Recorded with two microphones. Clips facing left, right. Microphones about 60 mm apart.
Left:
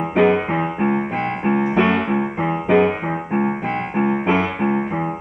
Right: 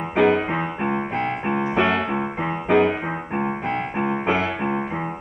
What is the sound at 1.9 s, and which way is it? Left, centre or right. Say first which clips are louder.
Music: left 3 dB; left.